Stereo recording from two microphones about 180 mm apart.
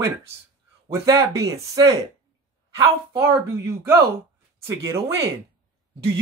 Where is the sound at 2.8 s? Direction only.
20° right (ahead or behind).